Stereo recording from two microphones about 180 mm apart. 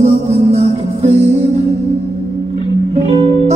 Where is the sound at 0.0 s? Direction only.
35° right (ahead or behind).